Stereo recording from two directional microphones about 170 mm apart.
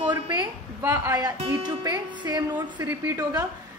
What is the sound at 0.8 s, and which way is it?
A woman's voice, 20° right (ahead or behind).